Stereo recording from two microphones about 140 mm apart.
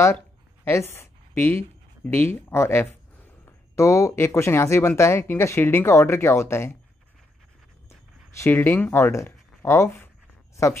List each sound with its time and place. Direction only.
0.7 s speech: 15° left (ahead or behind)
8.4 s speech: 15° left (ahead or behind)
10.5 s a sound: 20° left (ahead or behind)